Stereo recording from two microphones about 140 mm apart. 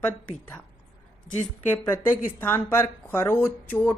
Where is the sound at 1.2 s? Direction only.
15° left (ahead or behind).